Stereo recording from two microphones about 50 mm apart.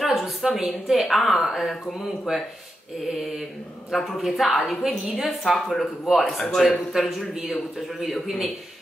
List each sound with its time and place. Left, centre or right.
0.0 s a sound: centre
0.7 s a woman's voice: centre
2.3 s a woman's voice: centre
3.9 s a woman's voice: centre